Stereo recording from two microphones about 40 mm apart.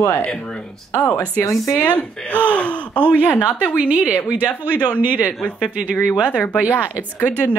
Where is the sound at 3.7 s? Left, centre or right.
Right.